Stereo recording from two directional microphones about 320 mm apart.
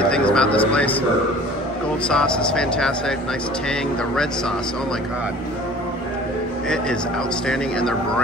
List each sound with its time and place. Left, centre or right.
0.1 s speech: centre
2.0 s speech: centre